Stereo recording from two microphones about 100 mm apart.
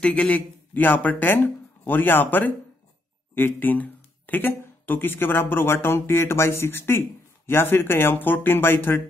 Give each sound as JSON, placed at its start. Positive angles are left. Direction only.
{"t": 0.0, "sound": "speech", "side_deg": 15}